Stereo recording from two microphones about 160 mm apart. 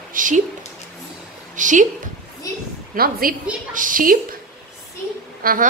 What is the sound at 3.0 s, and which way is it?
A woman's voice, 65° right (ahead or behind).